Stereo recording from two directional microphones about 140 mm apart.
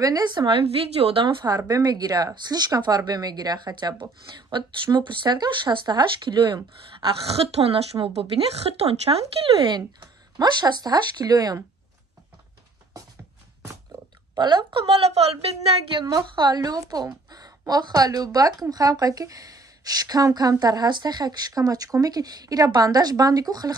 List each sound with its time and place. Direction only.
0.0 s speech: 30° right (ahead or behind)
1.4 s speech: 25° right (ahead or behind)
14.4 s speech: 35° right (ahead or behind)
16.1 s speech: 30° right (ahead or behind)